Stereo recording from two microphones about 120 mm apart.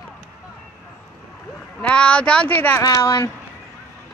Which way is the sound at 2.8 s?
30° left (ahead or behind).